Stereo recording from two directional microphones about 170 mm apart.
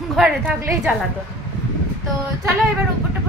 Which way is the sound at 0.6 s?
15° right (ahead or behind).